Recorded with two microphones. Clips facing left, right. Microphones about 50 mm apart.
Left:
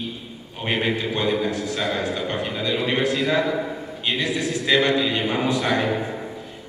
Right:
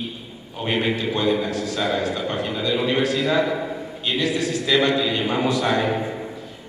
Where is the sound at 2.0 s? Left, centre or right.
Left.